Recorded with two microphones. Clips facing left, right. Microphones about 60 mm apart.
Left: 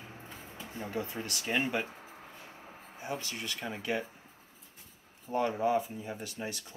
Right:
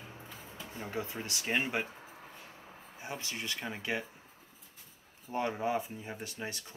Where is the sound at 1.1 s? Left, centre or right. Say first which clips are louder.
Left 2 dB; centre.